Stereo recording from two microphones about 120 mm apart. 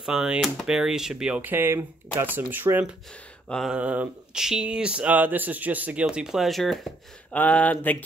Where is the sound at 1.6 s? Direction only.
20° right (ahead or behind).